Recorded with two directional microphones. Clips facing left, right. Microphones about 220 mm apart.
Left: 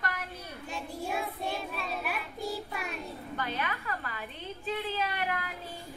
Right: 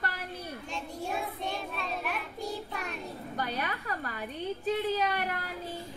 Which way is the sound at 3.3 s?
40° right (ahead or behind).